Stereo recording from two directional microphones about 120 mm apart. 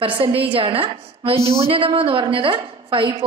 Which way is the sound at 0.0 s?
50° right (ahead or behind).